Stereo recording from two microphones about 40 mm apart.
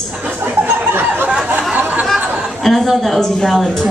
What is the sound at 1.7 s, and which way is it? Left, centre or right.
Chatter, right.